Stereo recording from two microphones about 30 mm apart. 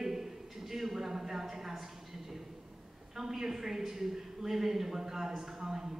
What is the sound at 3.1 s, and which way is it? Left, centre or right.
A woman's voice, centre.